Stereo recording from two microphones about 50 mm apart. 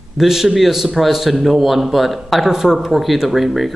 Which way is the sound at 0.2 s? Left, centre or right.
Centre.